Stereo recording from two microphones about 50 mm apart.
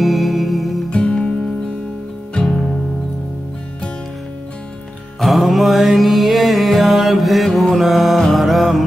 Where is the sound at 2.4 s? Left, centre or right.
Left.